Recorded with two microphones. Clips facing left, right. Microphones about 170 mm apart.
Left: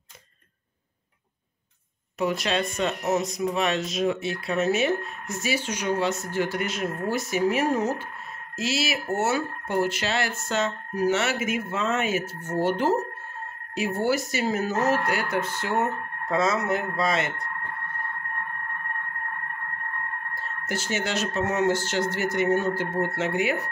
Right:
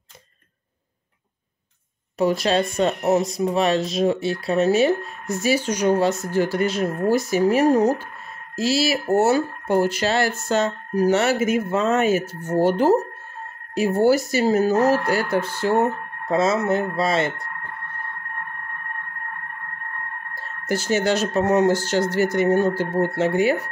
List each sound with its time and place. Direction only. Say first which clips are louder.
2.1 s speech: right 6 dB; 35° right (ahead or behind)
20.3 s speech: right 8 dB; 35° right (ahead or behind)